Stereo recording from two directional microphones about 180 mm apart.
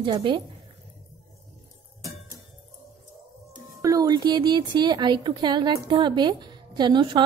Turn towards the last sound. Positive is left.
turn(degrees=-25)  # may be behind; listen again after turning